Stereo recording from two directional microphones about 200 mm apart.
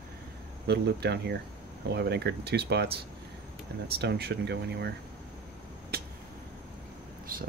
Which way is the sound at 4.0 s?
55° right (ahead or behind).